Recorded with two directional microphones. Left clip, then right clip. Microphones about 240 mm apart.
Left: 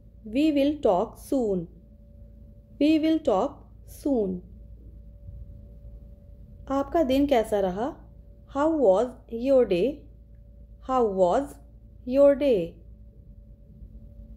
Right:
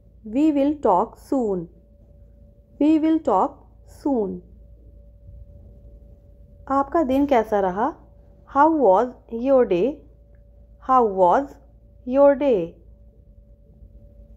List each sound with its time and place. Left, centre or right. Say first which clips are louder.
0.3 s a woman's voice: right 3 dB; right
2.8 s a woman's voice: right 4 dB; centre
6.6 s a woman's voice: right 4 dB; centre